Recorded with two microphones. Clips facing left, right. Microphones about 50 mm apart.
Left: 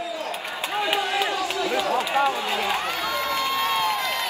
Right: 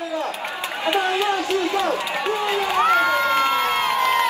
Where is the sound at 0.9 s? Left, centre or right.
Right.